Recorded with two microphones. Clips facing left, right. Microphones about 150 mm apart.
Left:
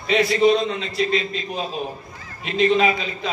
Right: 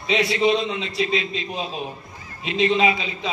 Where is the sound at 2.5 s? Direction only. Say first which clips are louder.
Left 2 dB; 40° left (ahead or behind).